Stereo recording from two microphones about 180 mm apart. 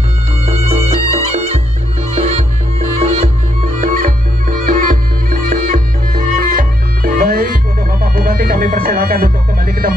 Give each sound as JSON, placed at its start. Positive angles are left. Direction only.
{"t": 0.5, "sound": "music", "side_deg": -35}
{"t": 3.8, "sound": "music", "side_deg": -50}